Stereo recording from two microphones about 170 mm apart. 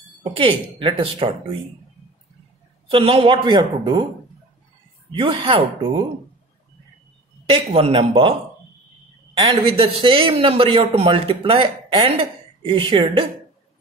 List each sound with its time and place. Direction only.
0.2 s speech: 30° right (ahead or behind)
2.9 s speech: 35° right (ahead or behind)
5.1 s speech: 30° right (ahead or behind)
7.4 s speech: 35° right (ahead or behind)
9.4 s speech: 35° right (ahead or behind)